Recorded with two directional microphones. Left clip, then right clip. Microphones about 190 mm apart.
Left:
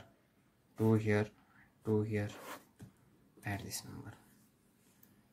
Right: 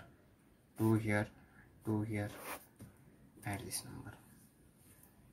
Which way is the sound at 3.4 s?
20° left (ahead or behind).